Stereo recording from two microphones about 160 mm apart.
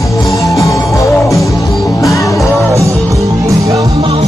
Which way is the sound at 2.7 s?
20° right (ahead or behind).